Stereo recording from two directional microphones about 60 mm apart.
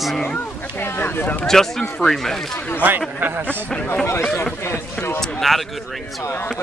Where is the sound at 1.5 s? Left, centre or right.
Centre.